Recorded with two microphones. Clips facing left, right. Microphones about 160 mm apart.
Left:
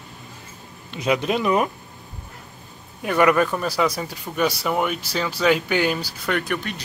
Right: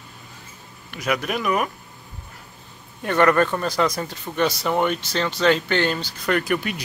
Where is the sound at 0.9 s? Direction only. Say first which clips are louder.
Left 3 dB; 25° left (ahead or behind).